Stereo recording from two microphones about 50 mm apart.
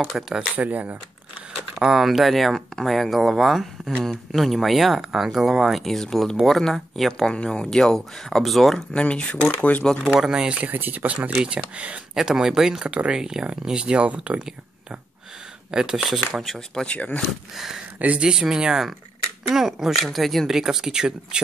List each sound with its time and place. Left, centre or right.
0.1 s speech: centre
0.6 s speech: right
1.8 s speech: centre
8.9 s speech: left
9.3 s speech: left
10.2 s speech: centre
10.6 s speech: right
11.4 s speech: right
12.2 s speech: centre
15.7 s speech: centre
16.8 s speech: left
17.9 s speech: right
18.2 s speech: centre